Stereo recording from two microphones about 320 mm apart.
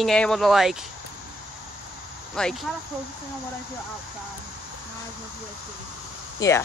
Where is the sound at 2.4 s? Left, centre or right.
Centre.